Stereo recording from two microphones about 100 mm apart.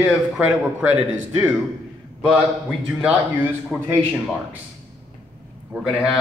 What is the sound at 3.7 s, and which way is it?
Speech, 20° right (ahead or behind).